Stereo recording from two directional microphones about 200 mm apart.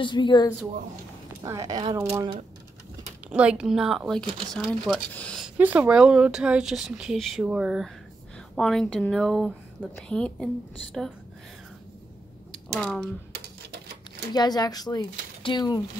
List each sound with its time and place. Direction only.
0.0 s speech: 25° left (ahead or behind)
1.4 s speech: 15° right (ahead or behind)
3.3 s speech: 5° right (ahead or behind)
4.3 s speech: 25° right (ahead or behind)
4.6 s speech: 5° left (ahead or behind)
5.6 s speech: 5° right (ahead or behind)
12.7 s speech: 5° left (ahead or behind)
14.3 s speech: 20° left (ahead or behind)